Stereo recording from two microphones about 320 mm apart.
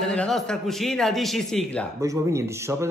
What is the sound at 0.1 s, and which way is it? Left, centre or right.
A man's voice, centre.